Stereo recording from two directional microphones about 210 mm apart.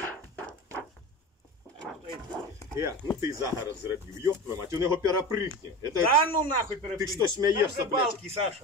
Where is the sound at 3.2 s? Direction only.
15° right (ahead or behind).